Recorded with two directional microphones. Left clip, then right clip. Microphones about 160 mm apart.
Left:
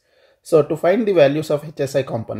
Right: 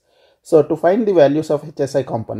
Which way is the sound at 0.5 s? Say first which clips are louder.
Right 2 dB; 25° right (ahead or behind).